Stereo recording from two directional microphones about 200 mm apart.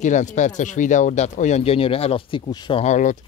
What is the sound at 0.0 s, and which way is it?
Speech, 35° left (ahead or behind).